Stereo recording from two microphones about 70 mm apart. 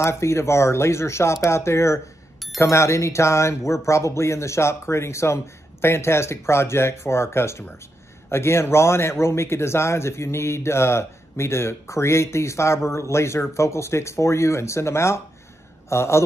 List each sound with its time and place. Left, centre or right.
0.0 s speech: left